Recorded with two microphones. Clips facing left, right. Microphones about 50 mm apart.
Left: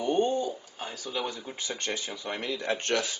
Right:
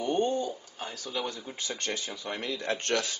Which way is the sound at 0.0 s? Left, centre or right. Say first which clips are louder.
Left 2 dB; centre.